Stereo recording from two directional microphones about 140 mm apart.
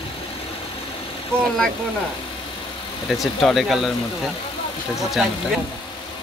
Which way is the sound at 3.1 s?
Centre (ahead or behind).